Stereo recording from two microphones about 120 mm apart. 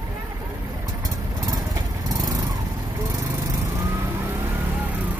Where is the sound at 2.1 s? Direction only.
30° right (ahead or behind).